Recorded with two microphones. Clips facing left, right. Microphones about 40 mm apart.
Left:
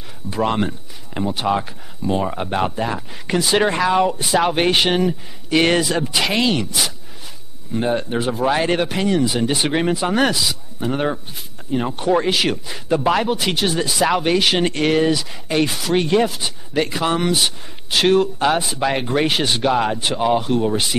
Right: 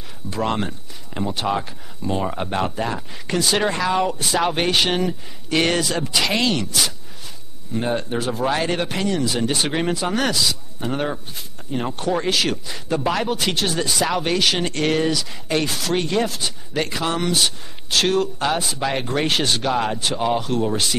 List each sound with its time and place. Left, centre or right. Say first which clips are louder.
0.3 s speech: left 3 dB; centre
3.3 s speech: left 3 dB; centre
5.6 s speech: left 3 dB; centre
8.0 s speech: left 3 dB; centre
16.7 s speech: left 4 dB; centre